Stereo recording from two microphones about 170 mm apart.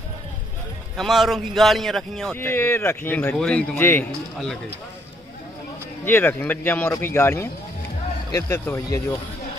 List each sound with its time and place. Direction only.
0.9 s speech: centre (ahead or behind)
2.3 s speech: 15° left (ahead or behind)
6.0 s speech: 10° left (ahead or behind)